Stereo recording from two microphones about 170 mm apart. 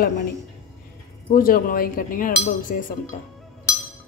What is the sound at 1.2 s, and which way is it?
Chink, 55° left (ahead or behind).